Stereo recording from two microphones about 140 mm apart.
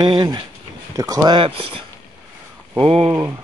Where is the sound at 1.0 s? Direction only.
25° right (ahead or behind); by 1.8 s 40° right (ahead or behind).